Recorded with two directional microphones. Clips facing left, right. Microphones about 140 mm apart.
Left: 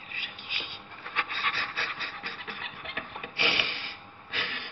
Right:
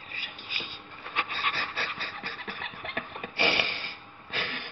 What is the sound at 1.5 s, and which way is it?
Rub, 40° right (ahead or behind).